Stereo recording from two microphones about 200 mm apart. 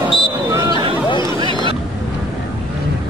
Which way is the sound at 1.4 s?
25° right (ahead or behind).